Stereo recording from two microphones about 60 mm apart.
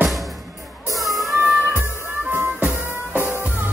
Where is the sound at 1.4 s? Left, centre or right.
Right.